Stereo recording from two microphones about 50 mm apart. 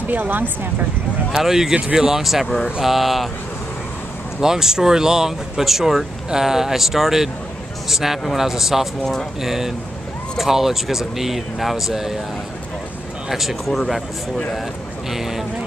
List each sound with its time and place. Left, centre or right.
0.0 s speech: right
1.3 s speech: centre
4.4 s speech: centre
13.3 s speech: centre